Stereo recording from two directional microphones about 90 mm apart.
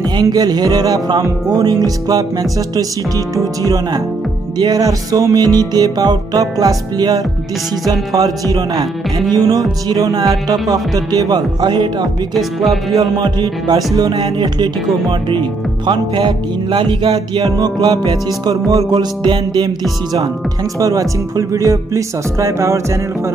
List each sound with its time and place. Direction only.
0.2 s music: 45° right (ahead or behind)
3.6 s speech: 40° right (ahead or behind)
4.6 s music: 45° right (ahead or behind)
8.1 s speech: 40° right (ahead or behind)
9.3 s music: 45° right (ahead or behind)
11.6 s music: 55° right (ahead or behind)
14.2 s music: 60° right (ahead or behind)
17.6 s music: 45° right (ahead or behind)
20.8 s speech: 40° right (ahead or behind)